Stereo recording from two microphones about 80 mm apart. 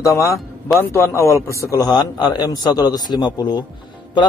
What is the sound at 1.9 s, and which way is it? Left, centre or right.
A man's voice, left.